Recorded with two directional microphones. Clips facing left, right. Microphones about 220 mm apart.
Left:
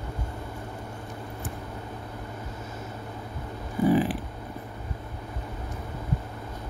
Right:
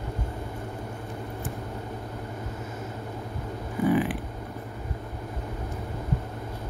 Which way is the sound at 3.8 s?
35° left (ahead or behind).